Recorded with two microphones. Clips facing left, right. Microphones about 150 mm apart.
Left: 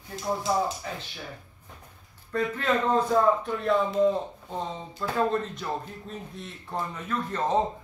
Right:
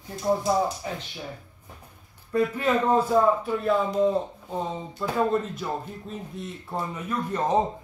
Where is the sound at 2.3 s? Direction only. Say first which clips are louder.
Right 3 dB; 10° right (ahead or behind).